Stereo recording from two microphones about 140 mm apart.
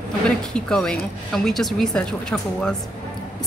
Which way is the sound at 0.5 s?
5° left (ahead or behind).